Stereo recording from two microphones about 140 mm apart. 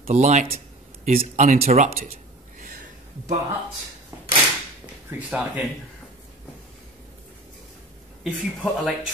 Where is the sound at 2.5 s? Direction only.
80° right.